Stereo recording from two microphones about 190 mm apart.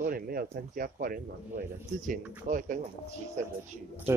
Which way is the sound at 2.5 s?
45° right (ahead or behind).